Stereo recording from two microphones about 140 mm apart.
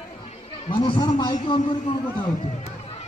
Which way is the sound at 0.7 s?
35° left (ahead or behind).